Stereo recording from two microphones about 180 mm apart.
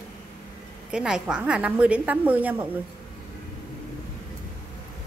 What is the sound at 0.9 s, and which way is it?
A woman's voice, 5° right (ahead or behind).